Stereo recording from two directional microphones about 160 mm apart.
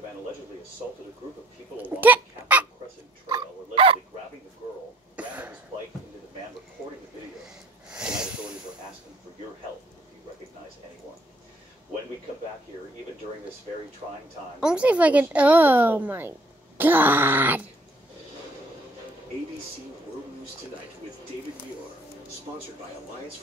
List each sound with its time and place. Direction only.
1.8 s speech: 10° right (ahead or behind)
3.3 s a sound: 30° right (ahead or behind)
5.1 s cough: 10° right (ahead or behind)
7.4 s wheeze: 5° right (ahead or behind)
14.6 s a woman's voice: 5° right (ahead or behind)